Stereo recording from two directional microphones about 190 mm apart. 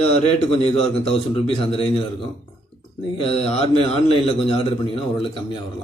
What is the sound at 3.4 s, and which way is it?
A man's voice, 30° left (ahead or behind).